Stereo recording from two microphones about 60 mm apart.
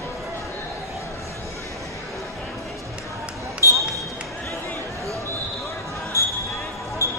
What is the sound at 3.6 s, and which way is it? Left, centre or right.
Basketball bounce, left.